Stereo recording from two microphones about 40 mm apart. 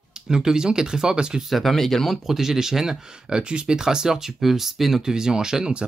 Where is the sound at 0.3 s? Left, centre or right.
Centre.